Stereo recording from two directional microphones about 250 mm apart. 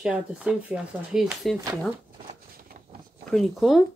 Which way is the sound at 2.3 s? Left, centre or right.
Right.